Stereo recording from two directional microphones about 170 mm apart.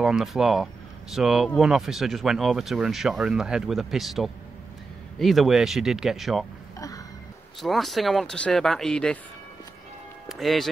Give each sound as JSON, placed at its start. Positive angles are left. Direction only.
{"t": 0.0, "sound": "speech", "side_deg": 0}
{"t": 7.6, "sound": "speech", "side_deg": 0}
{"t": 10.2, "sound": "music", "side_deg": 0}